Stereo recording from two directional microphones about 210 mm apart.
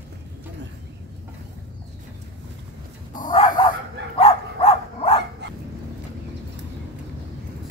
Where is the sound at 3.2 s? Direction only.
40° left (ahead or behind).